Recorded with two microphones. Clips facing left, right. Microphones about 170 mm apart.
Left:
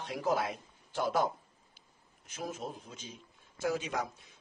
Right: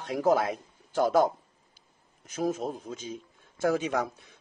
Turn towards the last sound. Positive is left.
turn(degrees=-60)  # may be behind; listen again after turning